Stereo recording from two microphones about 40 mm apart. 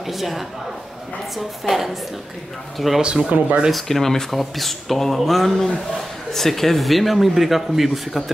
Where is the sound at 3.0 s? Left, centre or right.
Right.